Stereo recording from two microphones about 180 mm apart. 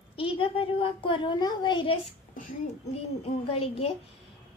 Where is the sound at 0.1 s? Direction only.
30° left (ahead or behind).